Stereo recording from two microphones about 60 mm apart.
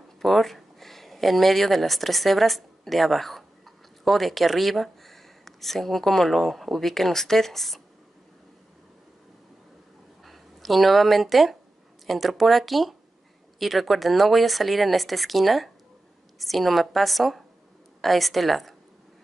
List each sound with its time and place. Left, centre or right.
0.2 s speech: centre
10.2 s speech: centre